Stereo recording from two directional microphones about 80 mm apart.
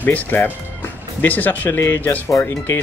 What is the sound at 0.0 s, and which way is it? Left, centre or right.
Speech, left.